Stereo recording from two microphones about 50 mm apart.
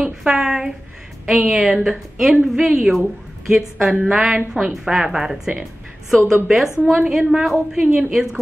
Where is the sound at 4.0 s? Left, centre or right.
Centre.